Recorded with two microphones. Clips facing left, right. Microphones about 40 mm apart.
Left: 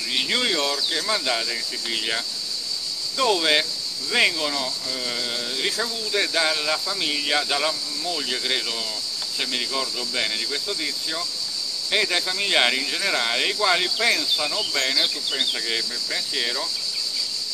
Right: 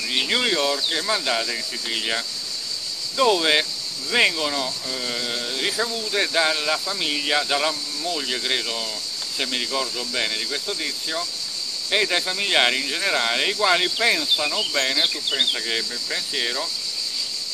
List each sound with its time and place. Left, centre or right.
0.1 s speech: centre
0.7 s speech: centre
15.5 s speech: centre